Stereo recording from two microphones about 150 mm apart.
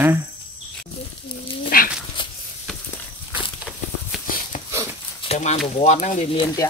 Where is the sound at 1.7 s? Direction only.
80° left.